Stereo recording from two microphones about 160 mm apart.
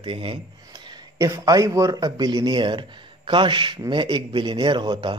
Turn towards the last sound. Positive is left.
turn(degrees=-30)  # may be behind; listen again after turning